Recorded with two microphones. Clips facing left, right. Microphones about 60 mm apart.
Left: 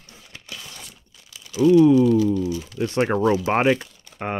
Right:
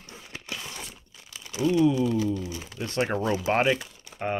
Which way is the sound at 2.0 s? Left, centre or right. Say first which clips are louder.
Left 8 dB; right.